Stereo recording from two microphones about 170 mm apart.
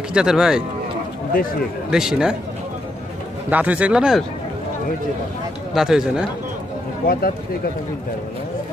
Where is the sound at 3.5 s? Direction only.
10° right (ahead or behind).